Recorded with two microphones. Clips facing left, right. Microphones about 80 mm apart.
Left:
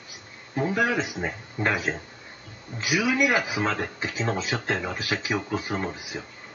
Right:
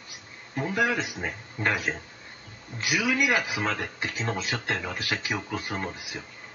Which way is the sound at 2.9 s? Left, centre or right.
Centre.